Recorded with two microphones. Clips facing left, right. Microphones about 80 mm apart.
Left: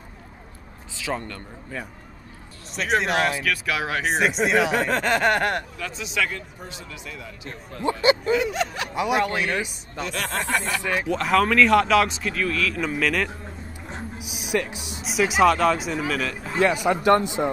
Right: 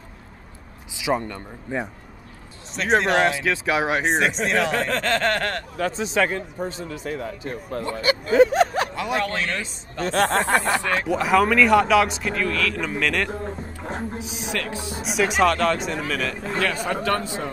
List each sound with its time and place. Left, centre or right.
0.9 s a man's voice: centre
3.4 s speech: right
4.1 s speech: centre
5.8 s a man's voice: right
7.8 s speech: left
8.3 s a sound: right
8.9 s speech: centre
10.0 s speech: right
10.8 s speech: centre
11.1 s speech: centre
13.3 s a sound: right
14.5 s speech: centre
15.0 s speech: centre
16.5 s speech: centre